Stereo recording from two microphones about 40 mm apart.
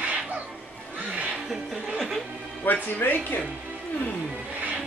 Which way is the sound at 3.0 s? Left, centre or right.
Left.